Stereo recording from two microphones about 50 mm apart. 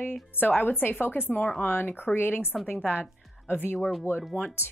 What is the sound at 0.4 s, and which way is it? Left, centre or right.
A woman's voice, left.